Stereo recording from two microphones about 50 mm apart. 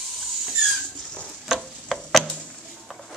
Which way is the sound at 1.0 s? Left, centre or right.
Centre.